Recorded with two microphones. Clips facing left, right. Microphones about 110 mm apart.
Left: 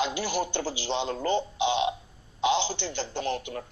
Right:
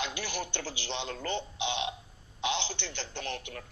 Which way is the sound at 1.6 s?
50° left (ahead or behind).